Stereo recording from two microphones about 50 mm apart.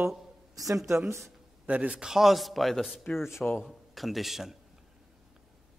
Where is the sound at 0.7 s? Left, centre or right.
Right.